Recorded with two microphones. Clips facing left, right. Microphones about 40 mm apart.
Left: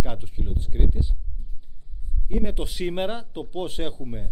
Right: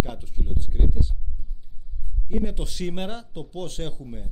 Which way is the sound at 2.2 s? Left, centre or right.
Centre.